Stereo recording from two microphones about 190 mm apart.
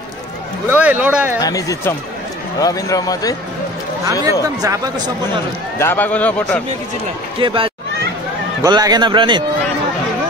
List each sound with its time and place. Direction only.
0.7 s a man's voice: 5° right (ahead or behind)
1.4 s speech: 15° left (ahead or behind)
4.0 s speech: 20° right (ahead or behind)
5.8 s speech: 10° left (ahead or behind)
7.3 s speech: 30° right (ahead or behind)